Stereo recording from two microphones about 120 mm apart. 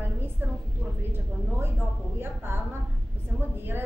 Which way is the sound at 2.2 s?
15° right (ahead or behind).